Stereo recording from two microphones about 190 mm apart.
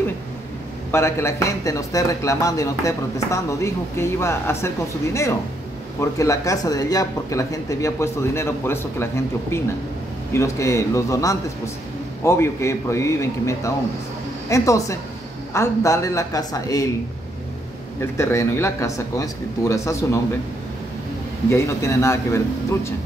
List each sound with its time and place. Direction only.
0.9 s speech: 15° left (ahead or behind)
5.9 s speech: 15° left (ahead or behind)
18.1 s speech: 15° left (ahead or behind)
21.5 s speech: 15° left (ahead or behind)